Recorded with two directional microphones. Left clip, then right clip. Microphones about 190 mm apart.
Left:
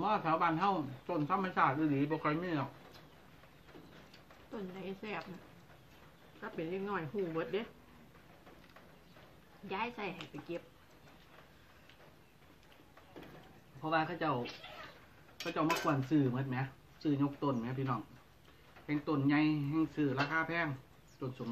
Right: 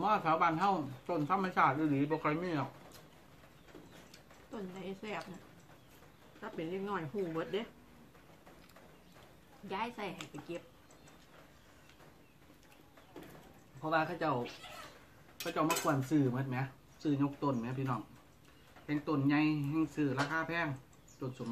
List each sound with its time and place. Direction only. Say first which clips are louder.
0.0 s speech: right 2 dB; 20° right (ahead or behind)
4.5 s speech: even; centre (ahead or behind)
6.4 s speech: even; centre (ahead or behind)
9.7 s speech: even; centre (ahead or behind)
13.7 s speech: right 1 dB; 15° right (ahead or behind)
15.8 s speech: even; 20° right (ahead or behind)